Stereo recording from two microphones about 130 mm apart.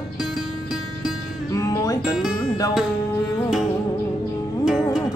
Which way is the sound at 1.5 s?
25° left (ahead or behind).